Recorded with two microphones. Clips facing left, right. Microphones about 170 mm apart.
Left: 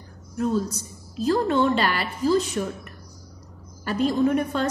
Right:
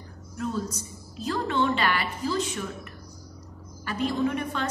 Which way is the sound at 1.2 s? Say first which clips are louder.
Left 6 dB; 40° left (ahead or behind).